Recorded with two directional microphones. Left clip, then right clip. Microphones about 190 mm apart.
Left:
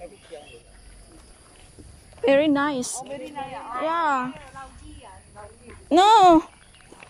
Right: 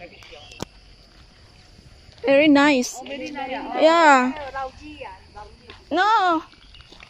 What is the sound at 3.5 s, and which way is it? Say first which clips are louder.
Speech: right 9 dB; 40° right (ahead or behind).